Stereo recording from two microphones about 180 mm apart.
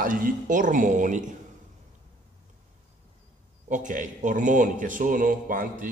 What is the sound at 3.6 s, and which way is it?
A man's voice, 45° right (ahead or behind).